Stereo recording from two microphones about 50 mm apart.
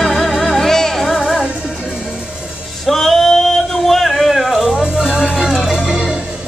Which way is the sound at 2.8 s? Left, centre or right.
Centre.